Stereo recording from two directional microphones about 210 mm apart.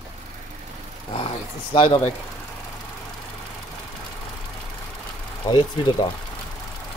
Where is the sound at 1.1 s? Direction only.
25° left (ahead or behind).